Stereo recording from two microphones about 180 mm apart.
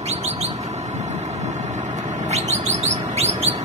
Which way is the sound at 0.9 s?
40° right (ahead or behind).